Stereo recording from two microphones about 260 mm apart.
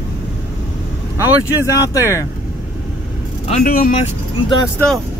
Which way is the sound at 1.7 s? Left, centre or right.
Centre.